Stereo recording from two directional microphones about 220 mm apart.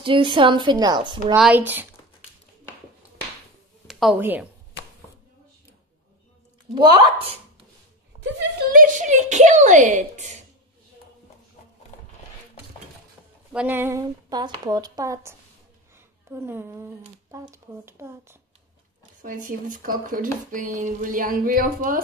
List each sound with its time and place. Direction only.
0.0 s a woman's voice: 20° right (ahead or behind)
1.3 s speech: 5° right (ahead or behind)
3.8 s a woman's voice: centre (ahead or behind)
6.7 s a woman's voice: 20° right (ahead or behind)
8.7 s speech: 35° right (ahead or behind)
13.5 s speech: 5° right (ahead or behind)
19.2 s speech: 35° right (ahead or behind)